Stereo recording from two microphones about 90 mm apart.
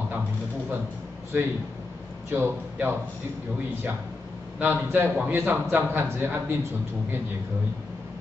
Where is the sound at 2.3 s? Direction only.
20° right (ahead or behind).